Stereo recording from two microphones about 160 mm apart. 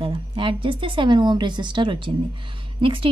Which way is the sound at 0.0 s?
35° right (ahead or behind).